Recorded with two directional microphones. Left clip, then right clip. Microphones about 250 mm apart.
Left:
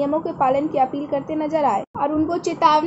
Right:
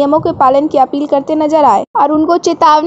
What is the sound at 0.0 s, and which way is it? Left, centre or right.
A woman's voice, right.